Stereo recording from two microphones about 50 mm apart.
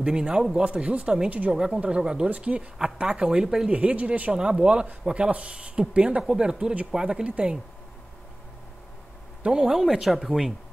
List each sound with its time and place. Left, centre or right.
0.0 s speech: centre
2.2 s speech: right
2.8 s speech: centre
3.7 s speech: right
4.3 s speech: centre
9.4 s speech: centre